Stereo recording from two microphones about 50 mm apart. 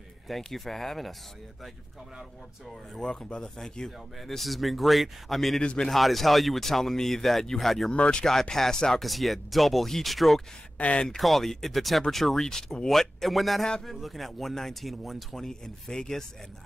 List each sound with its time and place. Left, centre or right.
0.3 s speech: centre
3.0 s speech: centre
5.6 s speech: centre
5.9 s speech: centre
7.9 s speech: left
8.3 s speech: centre
10.8 s speech: left
11.1 s speech: centre